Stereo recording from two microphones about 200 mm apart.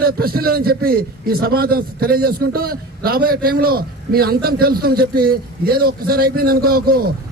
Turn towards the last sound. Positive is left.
turn(degrees=-50)  # may be behind; listen again after turning